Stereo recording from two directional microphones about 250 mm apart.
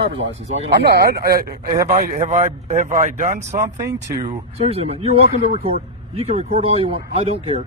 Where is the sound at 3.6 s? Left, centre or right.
Centre.